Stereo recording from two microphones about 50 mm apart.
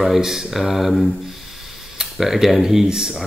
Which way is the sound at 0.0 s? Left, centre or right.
Centre.